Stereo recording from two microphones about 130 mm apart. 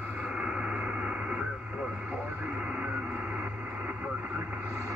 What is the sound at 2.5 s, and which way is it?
Music, 10° right (ahead or behind).